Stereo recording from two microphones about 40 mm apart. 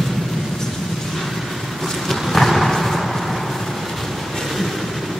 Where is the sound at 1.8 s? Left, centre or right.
Centre.